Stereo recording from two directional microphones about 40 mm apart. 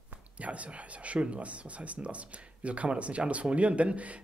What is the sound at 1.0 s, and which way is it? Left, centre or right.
Speech, right.